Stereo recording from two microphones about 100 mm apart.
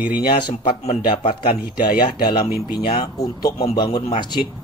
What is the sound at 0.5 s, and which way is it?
Speech, 90° left.